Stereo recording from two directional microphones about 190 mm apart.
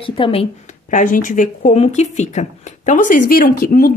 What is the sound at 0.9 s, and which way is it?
Speech, 45° left (ahead or behind).